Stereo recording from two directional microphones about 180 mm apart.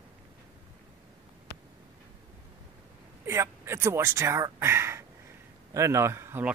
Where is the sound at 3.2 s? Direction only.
15° right (ahead or behind).